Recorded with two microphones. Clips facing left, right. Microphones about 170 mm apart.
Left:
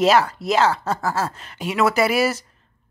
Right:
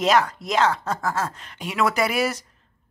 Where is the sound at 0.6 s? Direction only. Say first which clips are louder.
Left 2 dB; 30° left (ahead or behind).